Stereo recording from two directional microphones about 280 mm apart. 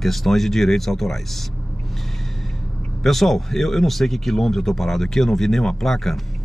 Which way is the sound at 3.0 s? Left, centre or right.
Centre.